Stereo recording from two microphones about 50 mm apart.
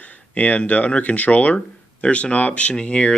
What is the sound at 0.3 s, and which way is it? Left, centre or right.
Speech, left.